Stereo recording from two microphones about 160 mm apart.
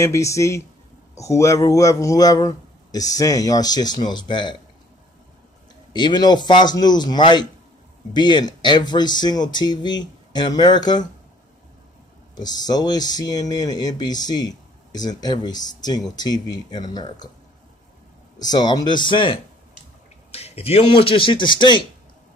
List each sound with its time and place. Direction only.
0.0 s speech: 20° left (ahead or behind)
5.9 s speech: 25° left (ahead or behind)
12.4 s speech: 25° left (ahead or behind)
18.4 s speech: 25° left (ahead or behind)